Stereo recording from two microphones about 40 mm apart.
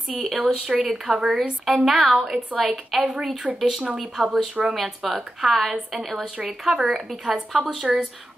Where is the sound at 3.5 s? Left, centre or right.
Right.